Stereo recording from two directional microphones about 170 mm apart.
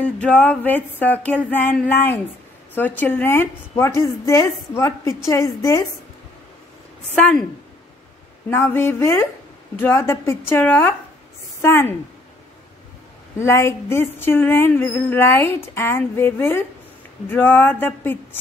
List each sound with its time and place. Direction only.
0.0 s speech: 5° left (ahead or behind)
7.2 s a woman's voice: 5° left (ahead or behind)
8.5 s speech: 15° left (ahead or behind)
13.4 s speech: 15° left (ahead or behind)